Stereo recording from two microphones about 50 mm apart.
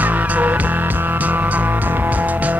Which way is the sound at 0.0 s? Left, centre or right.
Right.